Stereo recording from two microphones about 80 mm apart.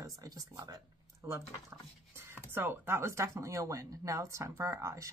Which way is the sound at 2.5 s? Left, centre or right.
Right.